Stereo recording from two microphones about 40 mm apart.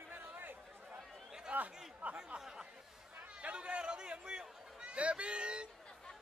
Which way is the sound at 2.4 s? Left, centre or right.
Centre.